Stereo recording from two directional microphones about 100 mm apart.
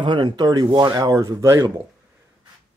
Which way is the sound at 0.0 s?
50° right (ahead or behind).